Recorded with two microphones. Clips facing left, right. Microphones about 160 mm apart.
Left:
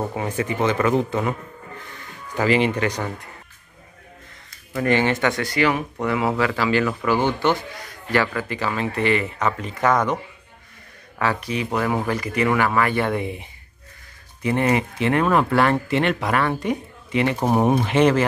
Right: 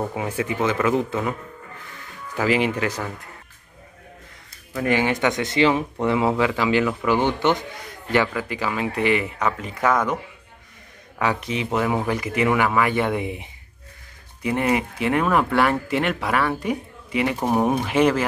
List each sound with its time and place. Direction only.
0.0 s speech: 5° right (ahead or behind)
2.3 s speech: 5° right (ahead or behind)
4.7 s speech: 10° right (ahead or behind)
8.3 s speech: 10° right (ahead or behind)
11.1 s speech: 20° right (ahead or behind)
17.4 s speech: 5° left (ahead or behind)
17.8 s speech: 5° right (ahead or behind)